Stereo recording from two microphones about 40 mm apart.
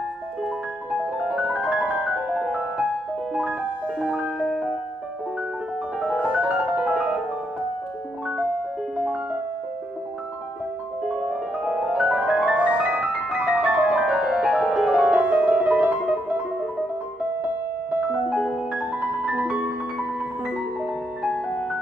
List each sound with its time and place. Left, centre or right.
1.3 s music: right
4.4 s music: centre
5.9 s music: right
11.1 s music: right
14.0 s music: right
15.1 s music: right
19.2 s music: right